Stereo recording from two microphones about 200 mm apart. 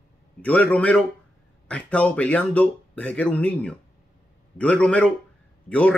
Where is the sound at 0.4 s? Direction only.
5° left (ahead or behind).